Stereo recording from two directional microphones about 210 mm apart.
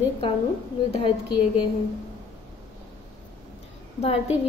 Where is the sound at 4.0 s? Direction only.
30° left (ahead or behind).